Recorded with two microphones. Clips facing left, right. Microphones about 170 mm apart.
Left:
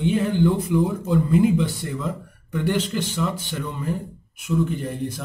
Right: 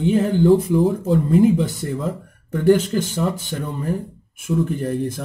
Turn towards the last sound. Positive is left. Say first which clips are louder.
# right 5 dB
turn(degrees=-50)  # may be behind; listen again after turning